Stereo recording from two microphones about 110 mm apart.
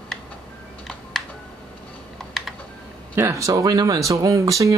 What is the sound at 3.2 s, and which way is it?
Speech, 25° right (ahead or behind).